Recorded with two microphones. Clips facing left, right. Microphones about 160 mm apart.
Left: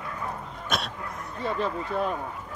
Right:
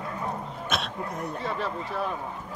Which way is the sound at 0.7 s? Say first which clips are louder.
Left 1 dB; centre (ahead or behind).